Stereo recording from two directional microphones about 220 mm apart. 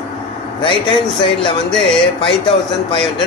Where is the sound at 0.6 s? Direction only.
20° left (ahead or behind).